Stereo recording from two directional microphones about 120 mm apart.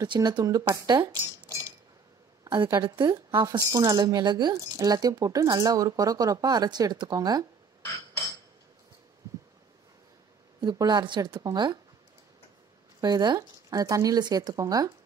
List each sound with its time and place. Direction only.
0.0 s speech: 35° right (ahead or behind)
10.6 s speech: 35° right (ahead or behind)
13.0 s speech: 35° right (ahead or behind)